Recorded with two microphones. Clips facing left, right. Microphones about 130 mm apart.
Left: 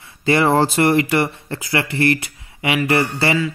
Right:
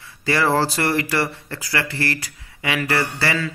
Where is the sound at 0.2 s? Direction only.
20° left (ahead or behind).